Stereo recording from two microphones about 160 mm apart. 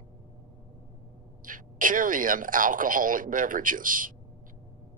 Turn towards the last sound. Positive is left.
turn(degrees=-60)  # may be behind; listen again after turning